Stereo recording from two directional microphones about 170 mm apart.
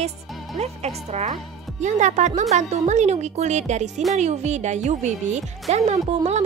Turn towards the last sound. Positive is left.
turn(degrees=-40)  # may be behind; listen again after turning